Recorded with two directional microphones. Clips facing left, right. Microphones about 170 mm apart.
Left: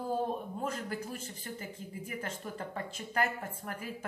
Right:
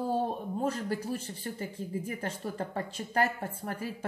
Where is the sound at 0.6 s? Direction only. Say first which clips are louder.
Right 5 dB; 35° right (ahead or behind).